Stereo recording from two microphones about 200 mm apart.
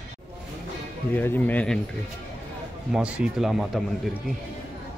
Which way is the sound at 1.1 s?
10° left (ahead or behind).